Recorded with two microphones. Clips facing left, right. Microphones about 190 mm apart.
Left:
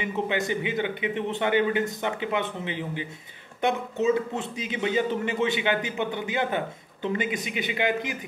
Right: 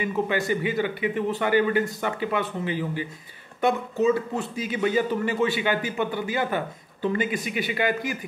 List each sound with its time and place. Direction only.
0.0 s a man's voice: 20° left (ahead or behind)